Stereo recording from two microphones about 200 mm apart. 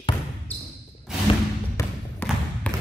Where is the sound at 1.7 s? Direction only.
10° left (ahead or behind).